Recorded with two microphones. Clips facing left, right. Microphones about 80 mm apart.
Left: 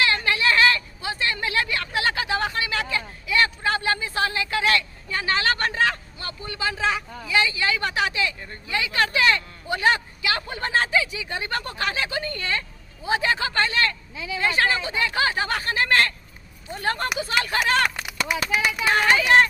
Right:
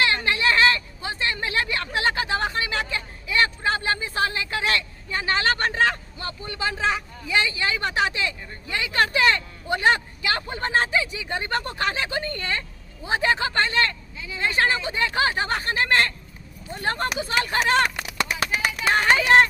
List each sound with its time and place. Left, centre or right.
0.0 s a sound: right
7.2 s speech: right
14.1 s speech: left
14.6 s speech: right
18.9 s speech: right